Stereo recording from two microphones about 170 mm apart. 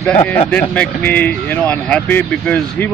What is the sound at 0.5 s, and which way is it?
Speech, 10° left (ahead or behind).